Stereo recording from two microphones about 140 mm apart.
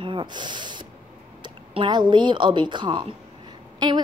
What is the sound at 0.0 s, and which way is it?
Snort, 35° right (ahead or behind).